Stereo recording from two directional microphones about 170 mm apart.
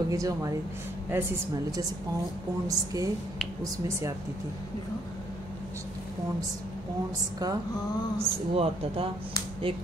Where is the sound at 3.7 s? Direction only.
20° right (ahead or behind).